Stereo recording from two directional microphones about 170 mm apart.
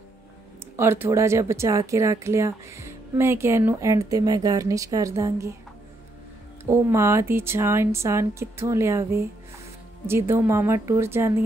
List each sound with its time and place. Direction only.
0.7 s speech: 15° right (ahead or behind)
6.6 s speech: 15° right (ahead or behind)